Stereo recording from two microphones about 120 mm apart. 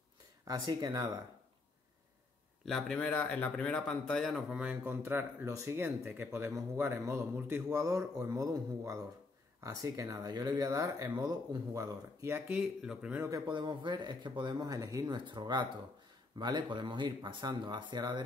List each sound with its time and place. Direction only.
0.5 s speech: 30° right (ahead or behind)
2.6 s speech: 5° left (ahead or behind)
4.8 s speech: 20° right (ahead or behind)
13.5 s speech: 40° right (ahead or behind)